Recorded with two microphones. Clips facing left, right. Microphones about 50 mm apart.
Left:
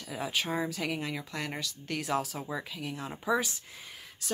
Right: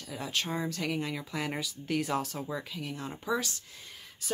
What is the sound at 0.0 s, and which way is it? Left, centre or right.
Speech, centre.